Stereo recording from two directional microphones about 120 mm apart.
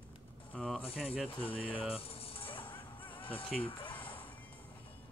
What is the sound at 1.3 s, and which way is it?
Speech, 50° left (ahead or behind).